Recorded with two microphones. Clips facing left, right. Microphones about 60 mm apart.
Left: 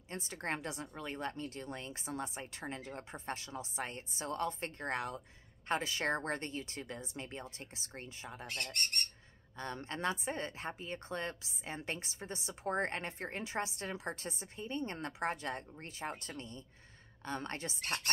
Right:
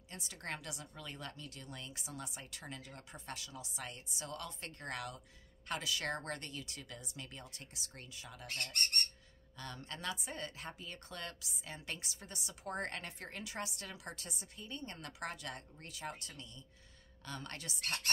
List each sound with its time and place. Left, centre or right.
0.1 s a woman's voice: left
9.6 s a woman's voice: left